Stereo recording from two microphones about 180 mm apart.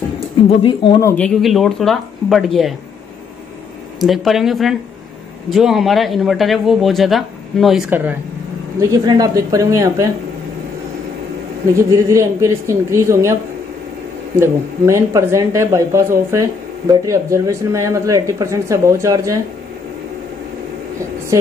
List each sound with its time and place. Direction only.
0.5 s speech: 30° left (ahead or behind)
1.0 s a man's voice: 5° left (ahead or behind)
4.0 s a man's voice: centre (ahead or behind); by 10.0 s 15° right (ahead or behind)
11.7 s speech: 15° right (ahead or behind)
14.4 s speech: 15° right (ahead or behind)